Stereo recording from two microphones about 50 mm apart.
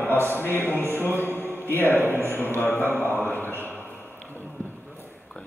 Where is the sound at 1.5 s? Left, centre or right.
Left.